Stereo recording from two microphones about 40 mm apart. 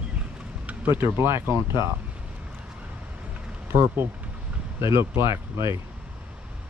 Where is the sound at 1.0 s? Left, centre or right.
Right.